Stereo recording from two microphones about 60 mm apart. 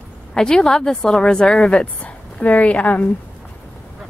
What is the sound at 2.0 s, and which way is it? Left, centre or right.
A woman's voice, left.